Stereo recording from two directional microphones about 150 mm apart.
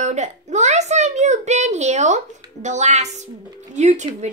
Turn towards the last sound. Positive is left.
turn(degrees=-50)  # may be behind; listen again after turning